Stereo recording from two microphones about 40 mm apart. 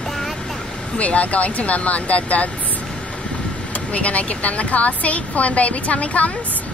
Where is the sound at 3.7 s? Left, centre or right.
Left.